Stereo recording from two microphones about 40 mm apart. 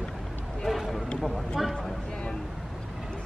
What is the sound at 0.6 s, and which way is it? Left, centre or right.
Speech, centre.